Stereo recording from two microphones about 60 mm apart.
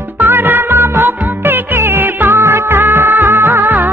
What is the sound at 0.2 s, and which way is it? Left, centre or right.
Music, right.